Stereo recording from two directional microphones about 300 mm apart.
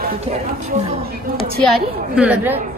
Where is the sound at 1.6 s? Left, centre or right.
Centre.